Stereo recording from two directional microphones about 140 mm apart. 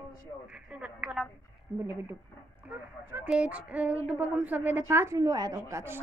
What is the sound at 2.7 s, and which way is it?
A woman's voice, 15° right (ahead or behind).